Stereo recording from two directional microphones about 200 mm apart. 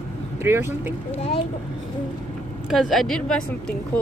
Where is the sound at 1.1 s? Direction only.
35° left (ahead or behind).